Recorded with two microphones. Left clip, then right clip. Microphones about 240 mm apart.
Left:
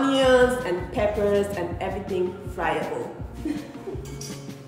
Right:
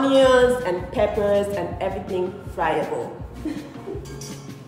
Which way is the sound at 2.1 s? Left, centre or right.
Centre.